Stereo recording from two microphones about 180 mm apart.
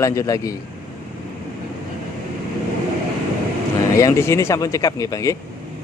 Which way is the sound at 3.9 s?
15° left (ahead or behind).